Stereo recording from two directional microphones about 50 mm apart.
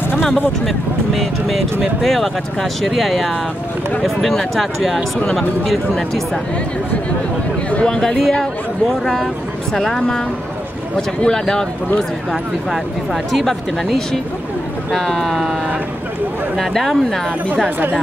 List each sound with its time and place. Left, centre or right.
0.7 s speech: centre
5.9 s speech: centre
7.8 s speech: centre
12.3 s speech: centre
16.5 s speech: centre
17.6 s speech: right